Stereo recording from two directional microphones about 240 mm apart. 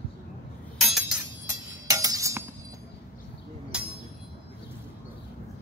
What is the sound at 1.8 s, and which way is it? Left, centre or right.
Music, centre.